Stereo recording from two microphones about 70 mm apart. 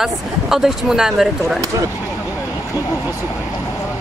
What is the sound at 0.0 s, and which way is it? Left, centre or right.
Speech, centre.